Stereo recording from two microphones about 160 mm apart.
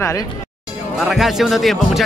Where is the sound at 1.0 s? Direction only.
Centre (ahead or behind).